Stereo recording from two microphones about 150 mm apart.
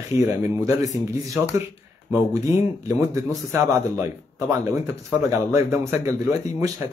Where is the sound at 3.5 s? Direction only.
20° right (ahead or behind).